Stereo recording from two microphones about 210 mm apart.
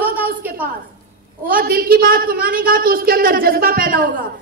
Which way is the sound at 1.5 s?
45° right (ahead or behind).